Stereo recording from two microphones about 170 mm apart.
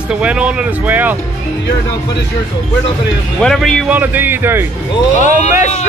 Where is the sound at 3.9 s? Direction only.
10° right (ahead or behind).